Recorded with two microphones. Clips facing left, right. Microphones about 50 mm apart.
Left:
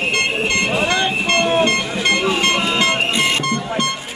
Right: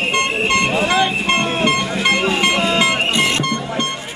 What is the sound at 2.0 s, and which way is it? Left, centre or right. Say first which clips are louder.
Vehicle: even; centre.